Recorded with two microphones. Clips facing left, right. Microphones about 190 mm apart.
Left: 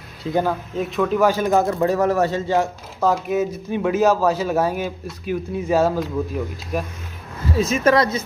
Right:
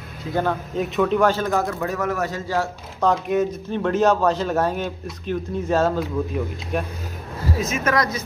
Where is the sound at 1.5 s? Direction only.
30° left (ahead or behind).